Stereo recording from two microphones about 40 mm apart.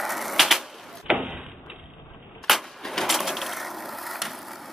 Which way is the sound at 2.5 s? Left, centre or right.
Centre.